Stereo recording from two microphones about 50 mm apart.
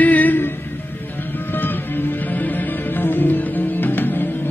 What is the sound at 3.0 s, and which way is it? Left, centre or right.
Music, left.